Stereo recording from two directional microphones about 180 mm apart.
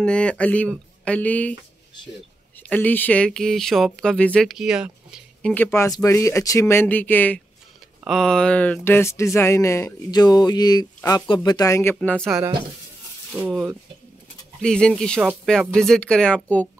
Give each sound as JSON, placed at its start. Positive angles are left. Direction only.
{"t": 0.0, "sound": "speech", "side_deg": 5}
{"t": 2.7, "sound": "speech", "side_deg": 10}
{"t": 5.5, "sound": "speech", "side_deg": 10}
{"t": 13.3, "sound": "speech", "side_deg": -5}
{"t": 14.6, "sound": "speech", "side_deg": 5}